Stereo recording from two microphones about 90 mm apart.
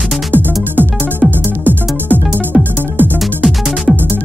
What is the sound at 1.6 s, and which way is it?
Music, 20° right (ahead or behind).